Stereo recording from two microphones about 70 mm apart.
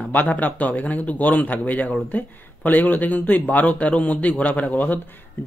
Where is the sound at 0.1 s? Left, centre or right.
Left.